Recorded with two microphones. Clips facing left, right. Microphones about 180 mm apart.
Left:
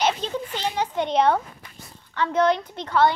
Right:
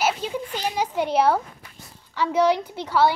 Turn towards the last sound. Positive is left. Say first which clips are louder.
# even
turn(degrees=-5)  # may be behind; listen again after turning